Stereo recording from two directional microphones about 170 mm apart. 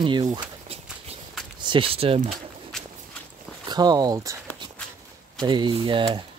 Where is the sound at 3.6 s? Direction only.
25° right (ahead or behind).